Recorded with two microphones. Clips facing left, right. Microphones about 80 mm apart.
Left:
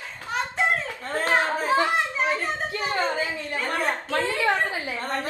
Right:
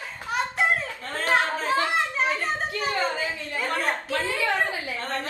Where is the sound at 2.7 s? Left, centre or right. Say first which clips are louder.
Left 1 dB; left.